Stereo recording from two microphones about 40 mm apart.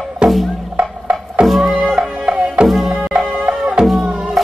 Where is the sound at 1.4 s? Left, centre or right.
Centre.